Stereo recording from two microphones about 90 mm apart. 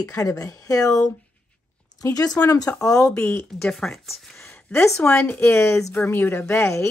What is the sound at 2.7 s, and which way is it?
Speech, 10° left (ahead or behind).